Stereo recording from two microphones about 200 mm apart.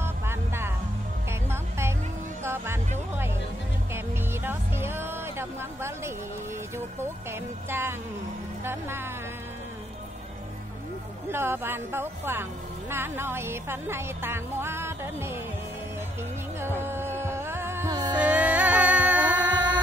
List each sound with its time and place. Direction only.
0.0 s music: 10° right (ahead or behind)
3.9 s music: 10° right (ahead or behind)
7.2 s speech: 10° right (ahead or behind)
11.2 s speech: 10° right (ahead or behind)
16.5 s music: 10° right (ahead or behind)
18.2 s music: 5° right (ahead or behind)